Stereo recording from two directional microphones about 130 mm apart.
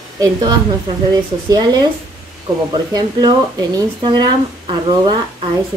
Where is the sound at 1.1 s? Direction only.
30° right (ahead or behind).